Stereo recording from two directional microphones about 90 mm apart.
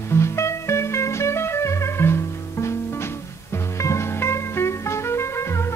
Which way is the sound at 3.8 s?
30° left (ahead or behind).